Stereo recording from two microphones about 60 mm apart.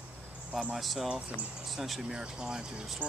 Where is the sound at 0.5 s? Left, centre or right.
Centre.